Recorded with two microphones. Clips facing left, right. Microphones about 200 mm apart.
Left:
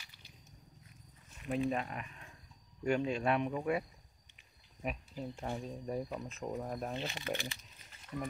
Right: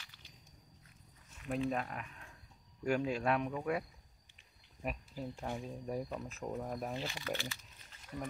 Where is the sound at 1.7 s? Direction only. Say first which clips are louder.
Left 1 dB; 5° left (ahead or behind).